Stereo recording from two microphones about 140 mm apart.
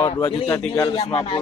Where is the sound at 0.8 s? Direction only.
40° left (ahead or behind).